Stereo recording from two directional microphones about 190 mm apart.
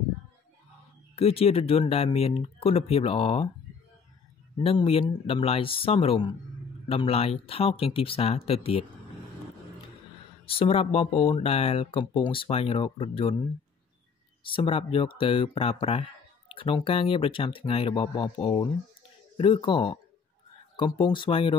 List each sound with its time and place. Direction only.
1.1 s speech: 30° left (ahead or behind)
4.6 s speech: 25° left (ahead or behind)
10.4 s speech: 30° left (ahead or behind)
14.4 s speech: 30° left (ahead or behind)